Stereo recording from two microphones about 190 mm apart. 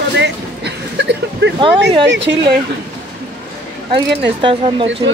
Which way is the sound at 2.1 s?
70° right (ahead or behind).